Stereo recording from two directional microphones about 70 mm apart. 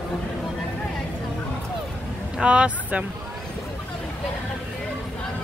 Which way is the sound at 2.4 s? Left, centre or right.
Centre.